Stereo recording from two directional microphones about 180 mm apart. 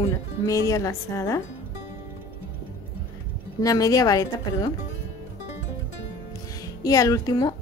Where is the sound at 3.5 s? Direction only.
20° left (ahead or behind).